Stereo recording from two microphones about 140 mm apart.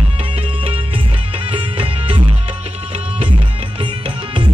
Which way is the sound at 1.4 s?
40° right (ahead or behind).